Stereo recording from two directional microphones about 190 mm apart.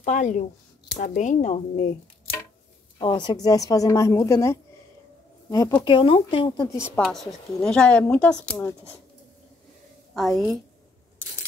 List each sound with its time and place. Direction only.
0.0 s speech: 40° left (ahead or behind)
3.0 s a woman's voice: 25° left (ahead or behind)
5.9 s speech: 25° left (ahead or behind)
7.0 s speech: centre (ahead or behind)
10.1 s speech: centre (ahead or behind)